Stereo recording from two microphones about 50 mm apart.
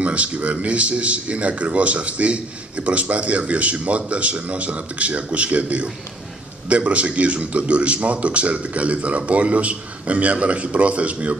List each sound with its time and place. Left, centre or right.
0.0 s a man's voice: right